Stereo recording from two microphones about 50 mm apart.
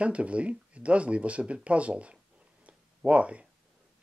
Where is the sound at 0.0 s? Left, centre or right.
Right.